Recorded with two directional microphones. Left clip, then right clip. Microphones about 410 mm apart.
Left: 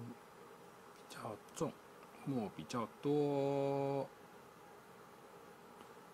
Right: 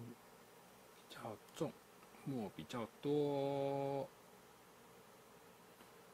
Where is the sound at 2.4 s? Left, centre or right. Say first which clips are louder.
Left 4 dB; right.